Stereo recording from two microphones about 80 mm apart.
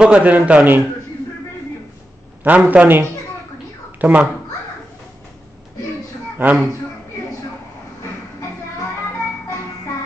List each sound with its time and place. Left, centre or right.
0.0 s a man's voice: centre
2.4 s a man's voice: centre
4.0 s speech: centre
6.3 s speech: centre